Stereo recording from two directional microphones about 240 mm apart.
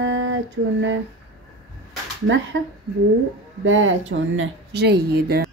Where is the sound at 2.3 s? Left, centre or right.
Right.